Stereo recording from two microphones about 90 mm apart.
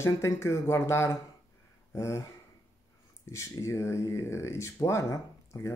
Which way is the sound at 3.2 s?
35° left (ahead or behind).